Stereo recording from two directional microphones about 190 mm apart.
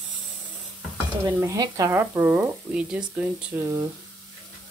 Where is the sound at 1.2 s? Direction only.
20° right (ahead or behind).